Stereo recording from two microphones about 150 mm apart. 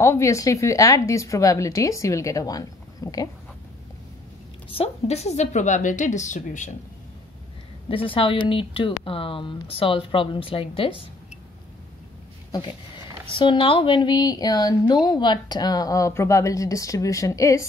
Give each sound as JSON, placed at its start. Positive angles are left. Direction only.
{"t": 0.0, "sound": "speech", "side_deg": 20}
{"t": 4.6, "sound": "a woman's voice", "side_deg": 40}
{"t": 7.9, "sound": "speech", "side_deg": 35}
{"t": 12.4, "sound": "speech", "side_deg": 30}